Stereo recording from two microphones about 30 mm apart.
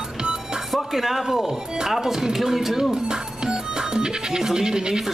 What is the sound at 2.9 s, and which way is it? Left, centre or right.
Music, right.